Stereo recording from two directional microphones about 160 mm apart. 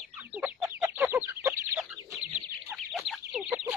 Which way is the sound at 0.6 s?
20° right (ahead or behind).